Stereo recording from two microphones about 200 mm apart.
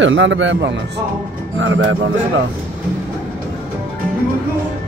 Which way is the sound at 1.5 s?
80° right.